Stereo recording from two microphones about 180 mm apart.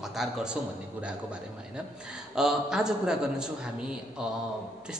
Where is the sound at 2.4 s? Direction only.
5° right (ahead or behind).